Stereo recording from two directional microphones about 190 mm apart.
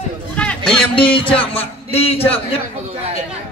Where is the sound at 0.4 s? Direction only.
5° left (ahead or behind).